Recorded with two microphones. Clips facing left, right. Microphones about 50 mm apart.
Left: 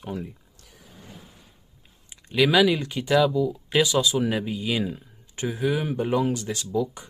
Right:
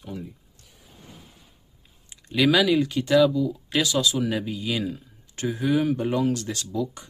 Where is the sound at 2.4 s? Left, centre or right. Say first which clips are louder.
Even; centre.